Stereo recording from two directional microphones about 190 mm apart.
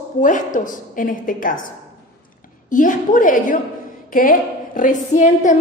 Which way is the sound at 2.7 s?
45° left (ahead or behind).